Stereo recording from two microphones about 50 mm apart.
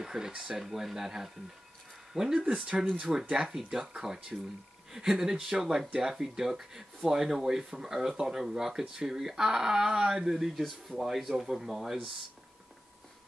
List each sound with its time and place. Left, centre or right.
0.0 s speech: centre